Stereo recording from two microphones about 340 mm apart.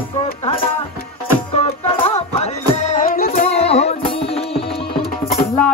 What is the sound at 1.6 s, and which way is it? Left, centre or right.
Music, centre.